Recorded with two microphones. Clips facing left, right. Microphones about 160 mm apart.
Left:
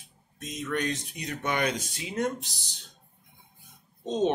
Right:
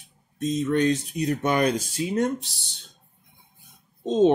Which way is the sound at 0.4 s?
30° right (ahead or behind).